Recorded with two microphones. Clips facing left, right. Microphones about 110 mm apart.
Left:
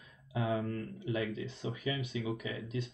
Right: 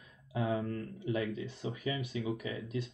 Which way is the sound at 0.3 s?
35° right (ahead or behind).